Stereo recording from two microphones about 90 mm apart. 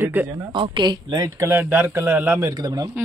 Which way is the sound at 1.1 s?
40° right (ahead or behind).